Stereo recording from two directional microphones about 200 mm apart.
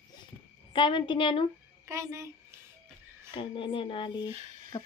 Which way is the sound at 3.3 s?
25° left (ahead or behind).